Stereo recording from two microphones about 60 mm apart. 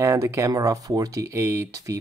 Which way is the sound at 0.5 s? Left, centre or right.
Right.